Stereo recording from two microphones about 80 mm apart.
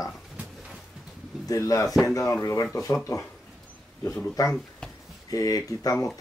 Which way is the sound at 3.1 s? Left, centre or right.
Left.